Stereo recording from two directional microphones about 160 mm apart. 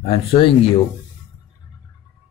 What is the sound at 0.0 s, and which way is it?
Speech, 35° left (ahead or behind).